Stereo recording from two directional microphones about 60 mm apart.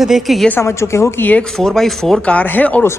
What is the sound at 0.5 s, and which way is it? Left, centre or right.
Speech, left.